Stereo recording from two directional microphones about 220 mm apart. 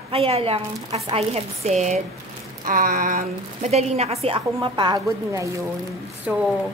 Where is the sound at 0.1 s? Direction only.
25° right (ahead or behind).